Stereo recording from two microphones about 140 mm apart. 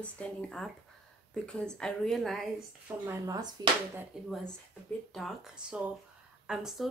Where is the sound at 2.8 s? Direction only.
20° right (ahead or behind).